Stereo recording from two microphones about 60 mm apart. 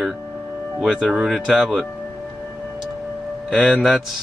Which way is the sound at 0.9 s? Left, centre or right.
Centre.